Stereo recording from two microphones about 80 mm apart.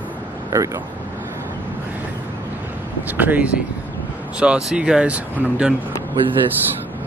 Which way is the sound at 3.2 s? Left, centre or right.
Right.